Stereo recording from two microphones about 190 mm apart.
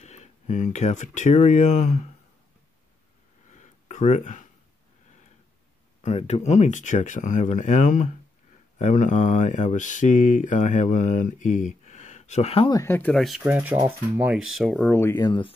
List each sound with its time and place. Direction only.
0.0 s speech: 35° left (ahead or behind)
3.4 s a sound: 40° left (ahead or behind)
6.0 s speech: 35° left (ahead or behind)
12.7 s speech: 10° left (ahead or behind)
14.9 s speech: 15° left (ahead or behind)